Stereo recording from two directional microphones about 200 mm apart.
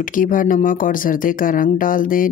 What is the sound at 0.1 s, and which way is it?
Speech, 40° left (ahead or behind).